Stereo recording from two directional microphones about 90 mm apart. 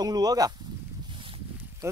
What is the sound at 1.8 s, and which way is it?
Speech, 30° right (ahead or behind).